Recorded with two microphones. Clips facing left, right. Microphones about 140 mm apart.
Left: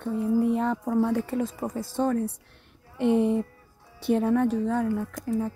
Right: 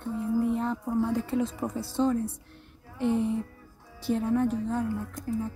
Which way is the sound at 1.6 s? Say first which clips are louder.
Even; 25° left (ahead or behind).